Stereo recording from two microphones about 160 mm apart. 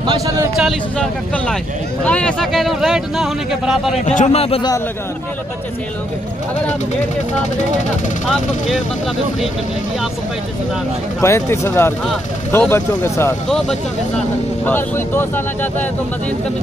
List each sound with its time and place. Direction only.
0.0 s speech: 30° right (ahead or behind)
0.6 s speech: centre (ahead or behind)
4.0 s a man's voice: 50° left (ahead or behind)
11.1 s speech: 15° left (ahead or behind)
13.5 s speech: centre (ahead or behind)
14.6 s speech: 15° left (ahead or behind)